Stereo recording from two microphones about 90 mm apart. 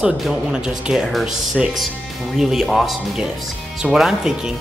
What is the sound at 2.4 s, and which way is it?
Speech, 5° right (ahead or behind).